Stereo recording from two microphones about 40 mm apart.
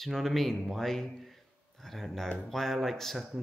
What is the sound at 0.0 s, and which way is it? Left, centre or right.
Speech, centre.